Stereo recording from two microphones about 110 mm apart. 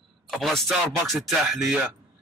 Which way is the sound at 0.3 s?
5° left (ahead or behind).